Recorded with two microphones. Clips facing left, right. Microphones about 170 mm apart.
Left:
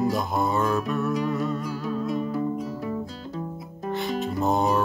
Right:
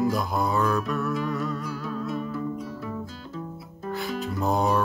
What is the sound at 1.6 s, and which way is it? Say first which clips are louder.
Music: left 3 dB; 15° left (ahead or behind).